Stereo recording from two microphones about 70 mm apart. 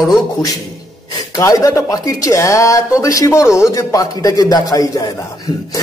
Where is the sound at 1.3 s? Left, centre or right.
Left.